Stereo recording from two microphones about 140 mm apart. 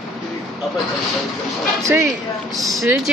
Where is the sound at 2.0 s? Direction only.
Centre (ahead or behind).